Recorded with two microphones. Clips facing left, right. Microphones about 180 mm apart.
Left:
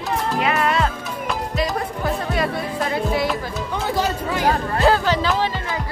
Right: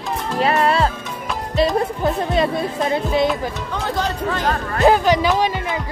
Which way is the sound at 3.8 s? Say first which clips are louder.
Even; 5° left (ahead or behind).